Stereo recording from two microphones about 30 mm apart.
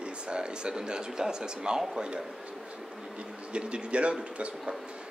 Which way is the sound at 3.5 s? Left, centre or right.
Right.